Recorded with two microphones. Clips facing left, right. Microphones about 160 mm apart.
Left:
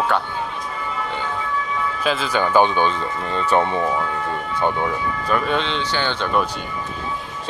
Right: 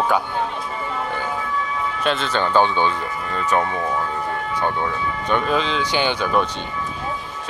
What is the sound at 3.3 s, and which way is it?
Speech, 25° left (ahead or behind).